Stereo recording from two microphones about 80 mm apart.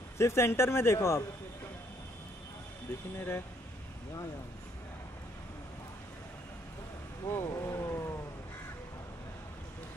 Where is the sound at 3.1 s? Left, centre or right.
Left.